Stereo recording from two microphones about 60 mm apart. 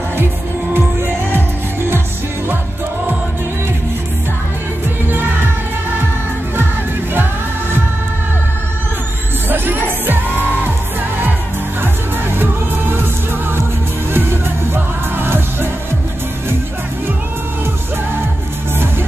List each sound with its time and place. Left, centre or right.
1.3 s music: right
9.5 s music: right
14.1 s music: right